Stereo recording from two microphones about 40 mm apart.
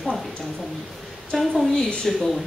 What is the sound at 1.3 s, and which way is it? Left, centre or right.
Speech, centre.